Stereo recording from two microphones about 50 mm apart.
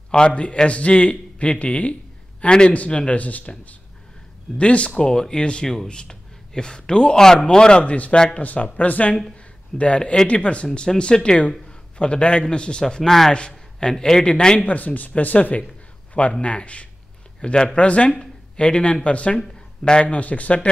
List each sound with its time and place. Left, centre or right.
0.1 s a man's voice: left
3.2 s a man's voice: left
12.8 s speech: centre
13.3 s speech: centre
14.7 s a man's voice: left
18.2 s a sound: centre
19.0 s a man's voice: left